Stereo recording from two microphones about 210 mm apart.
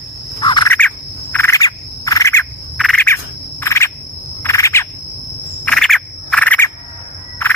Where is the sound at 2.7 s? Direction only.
Centre (ahead or behind).